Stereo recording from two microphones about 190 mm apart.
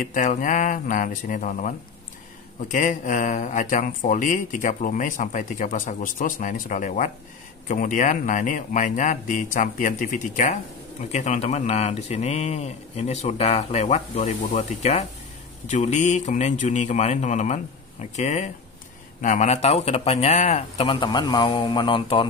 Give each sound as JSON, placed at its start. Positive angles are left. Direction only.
{"t": 0.0, "sound": "speech", "side_deg": 40}
{"t": 2.7, "sound": "speech", "side_deg": 40}